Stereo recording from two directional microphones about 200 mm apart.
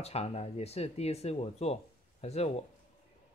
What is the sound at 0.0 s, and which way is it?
Speech, 30° left (ahead or behind).